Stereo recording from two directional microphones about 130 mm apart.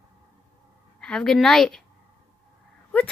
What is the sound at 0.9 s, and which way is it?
Speech, 5° left (ahead or behind).